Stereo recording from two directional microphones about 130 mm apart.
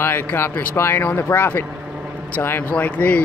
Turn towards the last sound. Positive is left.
turn(degrees=10)  # may be behind; listen again after turning